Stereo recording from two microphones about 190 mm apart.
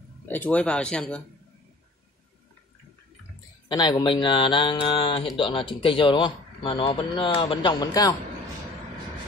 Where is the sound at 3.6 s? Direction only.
25° left (ahead or behind).